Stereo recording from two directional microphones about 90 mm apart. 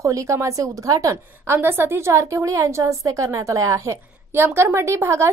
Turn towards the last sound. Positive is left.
turn(degrees=-30)  # may be behind; listen again after turning